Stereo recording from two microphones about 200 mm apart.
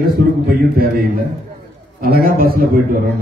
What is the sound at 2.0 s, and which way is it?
A man's voice, 45° right (ahead or behind).